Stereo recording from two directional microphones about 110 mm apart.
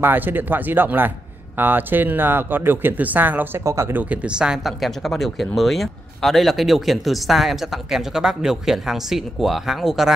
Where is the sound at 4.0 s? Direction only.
10° right (ahead or behind).